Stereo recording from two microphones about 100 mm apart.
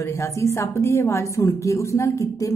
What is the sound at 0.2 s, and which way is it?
A woman's voice, 25° left (ahead or behind).